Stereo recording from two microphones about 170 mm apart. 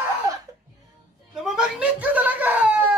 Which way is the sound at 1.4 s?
5° right (ahead or behind).